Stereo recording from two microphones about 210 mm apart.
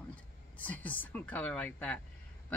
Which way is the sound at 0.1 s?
5° left (ahead or behind).